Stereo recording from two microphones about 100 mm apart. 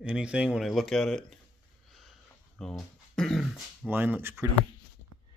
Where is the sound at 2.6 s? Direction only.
5° left (ahead or behind).